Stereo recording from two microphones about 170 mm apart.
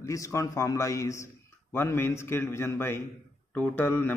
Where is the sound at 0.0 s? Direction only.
20° left (ahead or behind).